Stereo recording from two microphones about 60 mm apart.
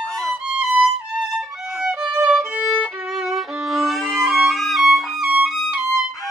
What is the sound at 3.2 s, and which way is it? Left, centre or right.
Violin, centre.